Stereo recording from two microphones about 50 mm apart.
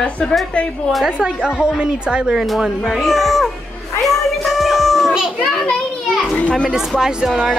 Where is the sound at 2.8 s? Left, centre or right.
Centre.